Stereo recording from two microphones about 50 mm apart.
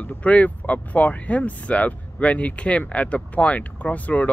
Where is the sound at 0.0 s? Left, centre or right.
Left.